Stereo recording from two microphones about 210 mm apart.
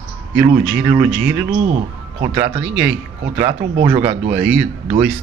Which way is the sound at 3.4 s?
20° right (ahead or behind).